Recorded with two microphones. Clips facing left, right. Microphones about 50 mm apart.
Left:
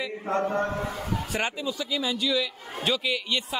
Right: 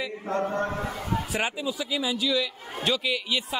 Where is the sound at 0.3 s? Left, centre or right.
Left.